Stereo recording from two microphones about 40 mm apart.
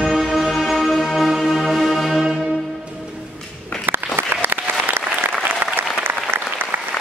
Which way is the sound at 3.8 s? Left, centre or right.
Right.